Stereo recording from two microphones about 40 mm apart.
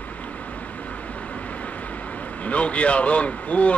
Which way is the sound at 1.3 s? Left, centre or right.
Left.